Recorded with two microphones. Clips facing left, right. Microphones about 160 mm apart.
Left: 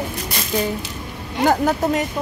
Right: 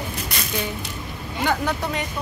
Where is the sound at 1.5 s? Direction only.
45° left (ahead or behind).